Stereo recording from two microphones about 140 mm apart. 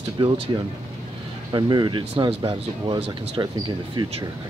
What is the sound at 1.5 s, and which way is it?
Speech, 30° right (ahead or behind).